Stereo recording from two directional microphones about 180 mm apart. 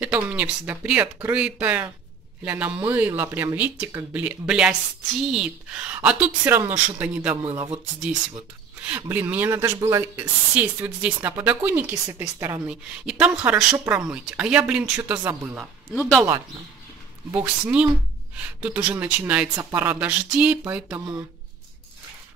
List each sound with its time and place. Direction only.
0.0 s a woman's voice: 10° right (ahead or behind)
7.4 s speech: 25° right (ahead or behind)
9.1 s a woman's voice: 10° right (ahead or behind)
10.5 s a woman's voice: 5° right (ahead or behind)
16.0 s speech: 5° left (ahead or behind)
17.3 s a woman's voice: 10° right (ahead or behind)